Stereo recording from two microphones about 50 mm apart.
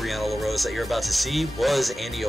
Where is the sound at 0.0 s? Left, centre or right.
Centre.